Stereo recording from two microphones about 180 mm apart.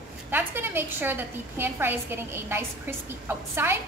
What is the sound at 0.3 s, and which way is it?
A woman's voice, 10° right (ahead or behind).